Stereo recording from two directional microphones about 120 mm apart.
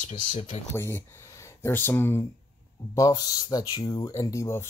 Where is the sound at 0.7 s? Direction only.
20° left (ahead or behind).